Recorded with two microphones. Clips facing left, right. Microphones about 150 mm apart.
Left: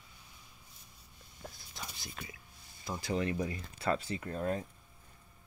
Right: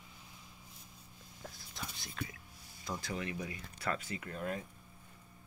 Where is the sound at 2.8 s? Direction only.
5° left (ahead or behind).